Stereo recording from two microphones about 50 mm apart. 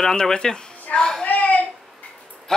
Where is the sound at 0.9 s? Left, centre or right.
Centre.